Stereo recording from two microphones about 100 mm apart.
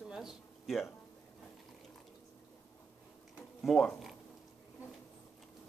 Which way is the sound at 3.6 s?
Centre (ahead or behind).